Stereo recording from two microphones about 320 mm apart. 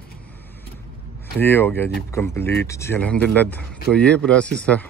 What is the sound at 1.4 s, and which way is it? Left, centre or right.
Speech, centre.